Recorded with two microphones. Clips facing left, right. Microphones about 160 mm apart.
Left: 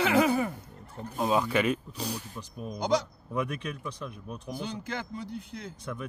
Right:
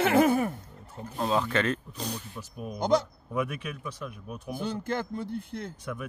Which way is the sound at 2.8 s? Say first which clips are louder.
Right 3 dB; 55° right (ahead or behind).